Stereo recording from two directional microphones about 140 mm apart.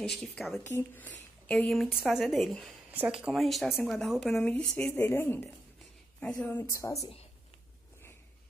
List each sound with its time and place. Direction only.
0.0 s a woman's voice: 5° left (ahead or behind)
0.7 s a woman's voice: 15° left (ahead or behind)
2.9 s a woman's voice: 10° right (ahead or behind)
4.9 s speech: 15° left (ahead or behind)
6.6 s a woman's voice: 20° left (ahead or behind)